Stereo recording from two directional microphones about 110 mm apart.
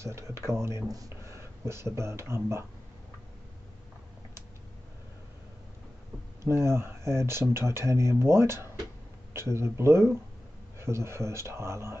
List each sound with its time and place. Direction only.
0.0 s speech: 25° right (ahead or behind)
6.4 s speech: 25° right (ahead or behind)